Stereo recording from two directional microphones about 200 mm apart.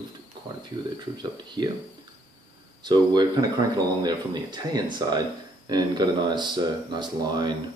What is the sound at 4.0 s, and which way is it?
Speech, 20° right (ahead or behind).